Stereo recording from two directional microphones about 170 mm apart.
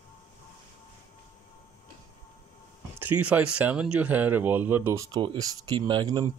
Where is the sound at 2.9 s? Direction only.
10° right (ahead or behind).